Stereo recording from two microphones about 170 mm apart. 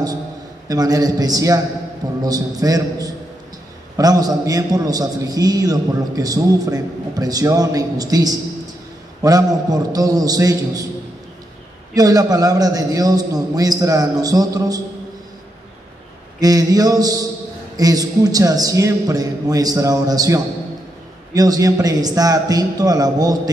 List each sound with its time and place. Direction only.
0.7 s a man's voice: 20° right (ahead or behind)
11.9 s a man's voice: 20° right (ahead or behind)
16.3 s a man's voice: 20° right (ahead or behind)